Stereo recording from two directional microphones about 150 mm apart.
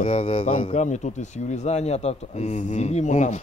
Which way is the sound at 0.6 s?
55° left (ahead or behind).